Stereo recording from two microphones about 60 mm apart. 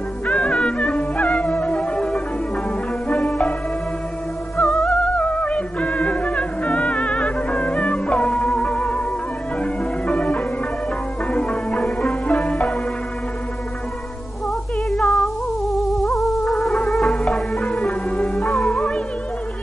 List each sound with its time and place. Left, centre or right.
0.3 s music: centre
4.6 s music: centre
4.9 s music: left
14.9 s music: centre